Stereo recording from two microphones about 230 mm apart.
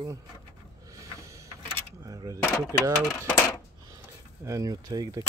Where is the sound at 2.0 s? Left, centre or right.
Centre.